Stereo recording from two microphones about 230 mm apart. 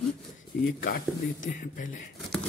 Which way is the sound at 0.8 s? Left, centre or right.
Left.